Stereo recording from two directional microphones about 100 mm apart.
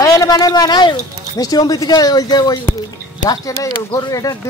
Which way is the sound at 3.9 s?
40° left (ahead or behind).